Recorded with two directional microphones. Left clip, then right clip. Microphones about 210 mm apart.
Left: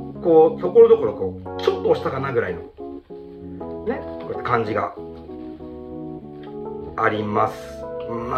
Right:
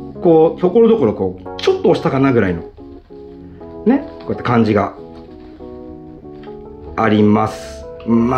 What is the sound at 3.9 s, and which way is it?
Speech, 45° right (ahead or behind).